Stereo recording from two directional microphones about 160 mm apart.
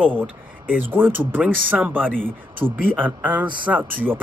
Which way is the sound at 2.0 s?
5° left (ahead or behind).